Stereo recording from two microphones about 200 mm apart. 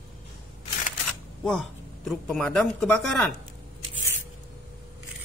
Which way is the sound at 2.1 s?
Centre (ahead or behind).